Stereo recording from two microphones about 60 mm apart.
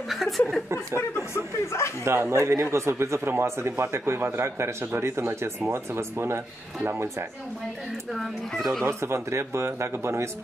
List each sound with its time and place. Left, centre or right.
0.1 s chuckle: centre
0.7 s speech: left
2.0 s speech: right
8.1 s speech: centre
8.8 s speech: right